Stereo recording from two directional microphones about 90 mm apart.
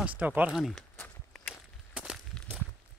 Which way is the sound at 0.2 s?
15° right (ahead or behind).